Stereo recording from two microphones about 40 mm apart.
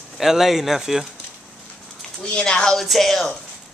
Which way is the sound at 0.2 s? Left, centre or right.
Centre.